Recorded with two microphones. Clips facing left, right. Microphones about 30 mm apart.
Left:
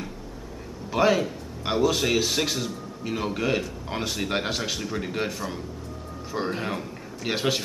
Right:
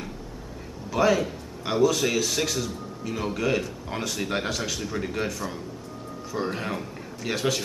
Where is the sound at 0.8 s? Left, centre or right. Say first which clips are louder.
Left 1 dB; centre.